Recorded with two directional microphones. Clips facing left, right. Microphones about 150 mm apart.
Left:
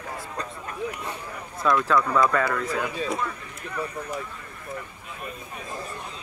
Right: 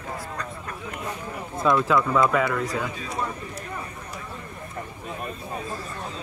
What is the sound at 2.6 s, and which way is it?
Speech, 35° right (ahead or behind).